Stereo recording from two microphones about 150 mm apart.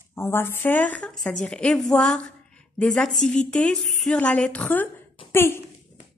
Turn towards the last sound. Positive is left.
turn(degrees=15)  # may be behind; listen again after turning